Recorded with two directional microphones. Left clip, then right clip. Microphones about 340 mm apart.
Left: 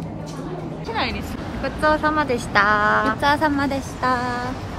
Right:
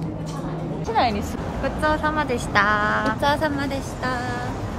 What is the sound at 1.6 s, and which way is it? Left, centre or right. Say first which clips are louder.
Speech: left 3 dB; centre.